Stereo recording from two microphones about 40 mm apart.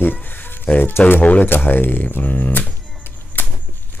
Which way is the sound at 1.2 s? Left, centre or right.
Left.